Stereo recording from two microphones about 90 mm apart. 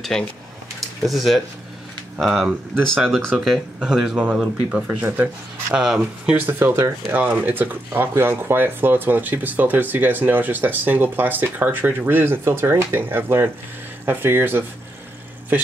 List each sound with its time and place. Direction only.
0.1 s speech: 5° left (ahead or behind)
4.8 s speech: 20° right (ahead or behind)
5.8 s speech: 10° right (ahead or behind)
6.4 s speech: 25° right (ahead or behind)